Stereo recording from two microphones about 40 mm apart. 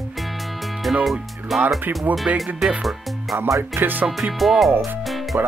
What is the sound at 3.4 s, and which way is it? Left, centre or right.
Music, right.